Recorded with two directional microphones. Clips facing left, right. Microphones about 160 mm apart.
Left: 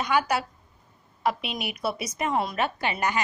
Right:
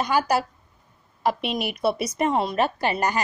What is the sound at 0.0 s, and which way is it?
A woman's voice, 40° right (ahead or behind).